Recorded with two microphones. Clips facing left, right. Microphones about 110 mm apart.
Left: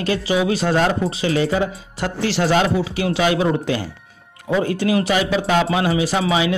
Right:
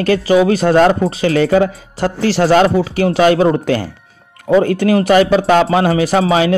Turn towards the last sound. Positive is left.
turn(degrees=-55)  # may be behind; listen again after turning